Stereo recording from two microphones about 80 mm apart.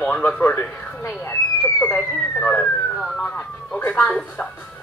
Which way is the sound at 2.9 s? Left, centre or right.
Centre.